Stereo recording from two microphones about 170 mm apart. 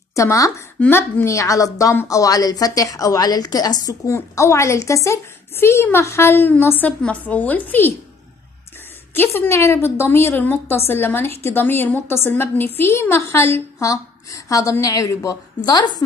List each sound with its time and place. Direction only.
0.1 s speech: 20° left (ahead or behind)
9.1 s a woman's voice: 10° left (ahead or behind)